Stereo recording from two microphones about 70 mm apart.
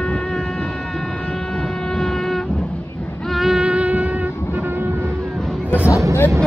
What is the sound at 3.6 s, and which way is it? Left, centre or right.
Music, centre.